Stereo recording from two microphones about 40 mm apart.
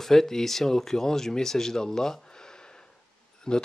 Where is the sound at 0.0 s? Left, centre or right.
Centre.